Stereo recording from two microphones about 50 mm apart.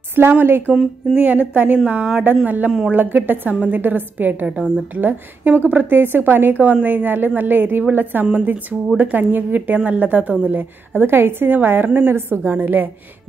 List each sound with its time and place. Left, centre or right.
0.1 s speech: right
1.1 s a woman's voice: right
4.5 s a woman's voice: right
5.0 s a woman's voice: right